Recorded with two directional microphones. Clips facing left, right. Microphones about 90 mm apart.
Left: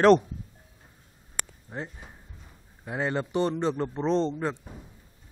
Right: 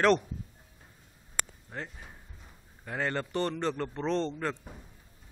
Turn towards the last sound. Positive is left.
turn(degrees=15)  # may be behind; listen again after turning